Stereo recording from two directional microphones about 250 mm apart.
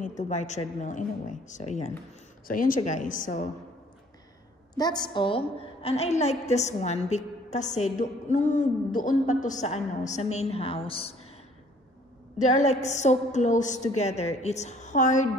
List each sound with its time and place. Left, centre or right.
0.0 s a woman's voice: left
4.7 s a woman's voice: centre
12.4 s a woman's voice: left